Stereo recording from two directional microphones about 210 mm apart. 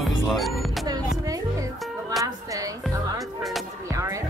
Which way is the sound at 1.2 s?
15° right (ahead or behind).